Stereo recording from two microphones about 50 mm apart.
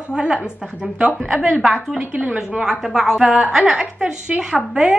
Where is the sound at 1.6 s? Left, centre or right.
Centre.